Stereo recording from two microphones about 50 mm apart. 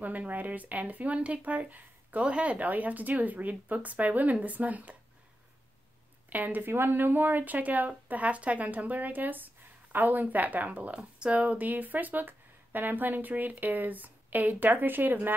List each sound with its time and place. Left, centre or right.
0.0 s speech: right
6.3 s speech: right